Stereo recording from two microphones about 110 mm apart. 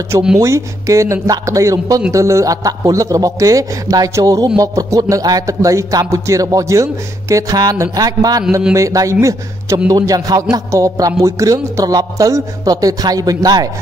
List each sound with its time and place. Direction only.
0.4 s a man's voice: 30° right (ahead or behind)